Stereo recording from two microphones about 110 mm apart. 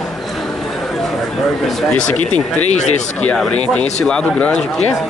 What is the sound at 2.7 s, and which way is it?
Speech, 90° left.